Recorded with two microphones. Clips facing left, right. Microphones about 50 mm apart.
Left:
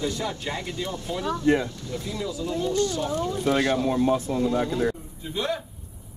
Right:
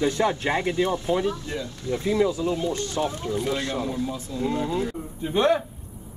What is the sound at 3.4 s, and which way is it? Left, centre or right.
Speech, left.